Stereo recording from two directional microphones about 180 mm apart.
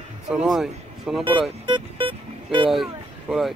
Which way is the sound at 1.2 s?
25° right (ahead or behind).